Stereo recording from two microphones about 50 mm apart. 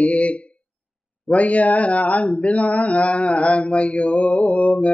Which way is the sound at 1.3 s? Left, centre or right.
Left.